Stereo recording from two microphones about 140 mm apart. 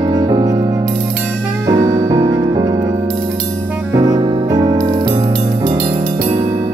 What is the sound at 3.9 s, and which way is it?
Music, 30° right (ahead or behind).